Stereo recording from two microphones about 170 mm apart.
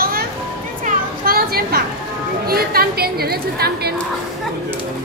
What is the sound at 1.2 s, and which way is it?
A woman's voice, 60° right (ahead or behind).